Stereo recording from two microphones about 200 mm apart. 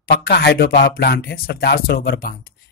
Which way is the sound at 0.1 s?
55° left (ahead or behind).